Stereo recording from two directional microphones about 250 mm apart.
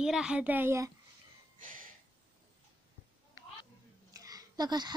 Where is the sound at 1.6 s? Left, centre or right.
Right.